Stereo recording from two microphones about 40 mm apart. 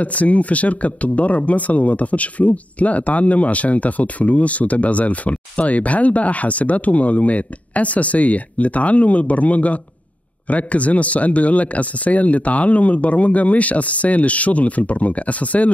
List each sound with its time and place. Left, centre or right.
0.0 s speech: left